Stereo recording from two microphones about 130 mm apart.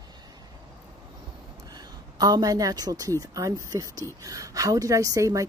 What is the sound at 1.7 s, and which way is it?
A woman's voice, 30° right (ahead or behind).